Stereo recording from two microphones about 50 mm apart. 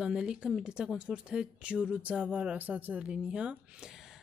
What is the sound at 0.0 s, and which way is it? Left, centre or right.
A woman's voice, centre.